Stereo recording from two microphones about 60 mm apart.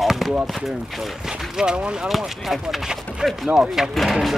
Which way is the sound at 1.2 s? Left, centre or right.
Centre.